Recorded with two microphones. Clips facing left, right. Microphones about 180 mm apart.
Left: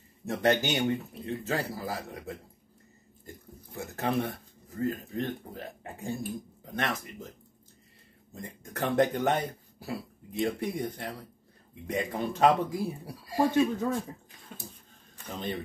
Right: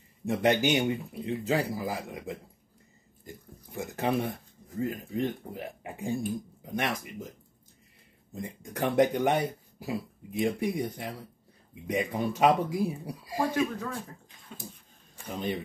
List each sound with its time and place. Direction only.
0.2 s speech: 15° right (ahead or behind)
3.7 s speech: 15° right (ahead or behind)
8.4 s speech: 15° right (ahead or behind)
15.2 s speech: 15° right (ahead or behind)